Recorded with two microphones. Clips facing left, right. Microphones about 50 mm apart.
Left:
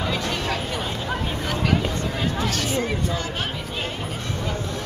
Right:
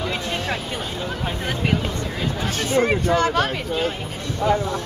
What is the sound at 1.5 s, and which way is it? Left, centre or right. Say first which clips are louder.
Vehicle: even; right.